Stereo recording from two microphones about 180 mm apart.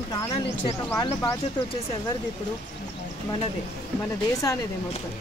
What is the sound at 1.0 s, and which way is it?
Speech, 20° left (ahead or behind).